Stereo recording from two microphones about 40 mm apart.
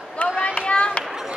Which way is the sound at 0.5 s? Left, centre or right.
Left.